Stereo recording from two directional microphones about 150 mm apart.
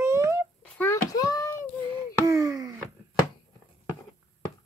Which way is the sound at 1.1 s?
25° left (ahead or behind).